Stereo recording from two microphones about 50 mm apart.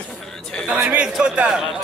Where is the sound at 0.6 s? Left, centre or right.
Right.